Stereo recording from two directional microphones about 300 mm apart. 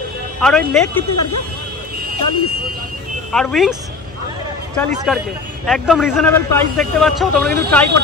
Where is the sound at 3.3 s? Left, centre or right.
Centre.